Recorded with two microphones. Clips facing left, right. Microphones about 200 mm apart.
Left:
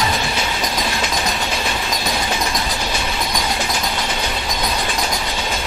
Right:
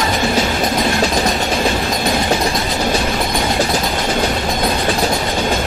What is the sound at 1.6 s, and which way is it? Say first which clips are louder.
Train: right 6 dB; 50° right (ahead or behind).